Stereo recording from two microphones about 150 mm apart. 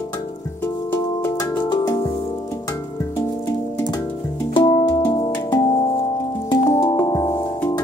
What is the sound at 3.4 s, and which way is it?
Music, 15° left (ahead or behind).